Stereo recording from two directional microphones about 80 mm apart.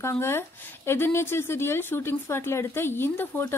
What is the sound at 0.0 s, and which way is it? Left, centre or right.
A woman's voice, left.